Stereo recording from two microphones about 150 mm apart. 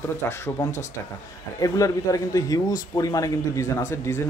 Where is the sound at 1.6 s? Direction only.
25° left (ahead or behind).